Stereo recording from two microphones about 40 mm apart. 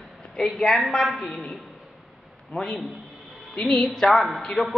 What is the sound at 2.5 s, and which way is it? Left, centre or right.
A man's voice, centre.